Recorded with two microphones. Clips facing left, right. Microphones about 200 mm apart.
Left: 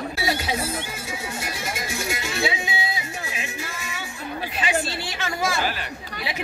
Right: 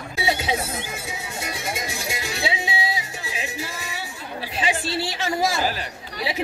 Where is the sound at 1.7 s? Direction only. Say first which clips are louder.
Left 1 dB; 25° right (ahead or behind).